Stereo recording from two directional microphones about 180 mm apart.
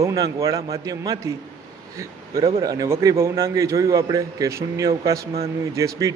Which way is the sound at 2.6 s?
15° right (ahead or behind).